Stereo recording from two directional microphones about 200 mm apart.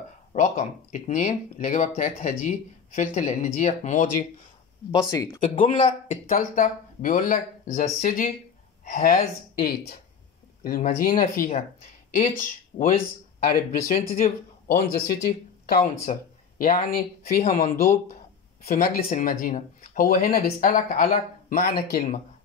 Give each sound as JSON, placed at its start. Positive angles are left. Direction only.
{"t": 0.3, "sound": "speech", "side_deg": 40}
{"t": 4.9, "sound": "speech", "side_deg": 15}
{"t": 5.4, "sound": "speech", "side_deg": 40}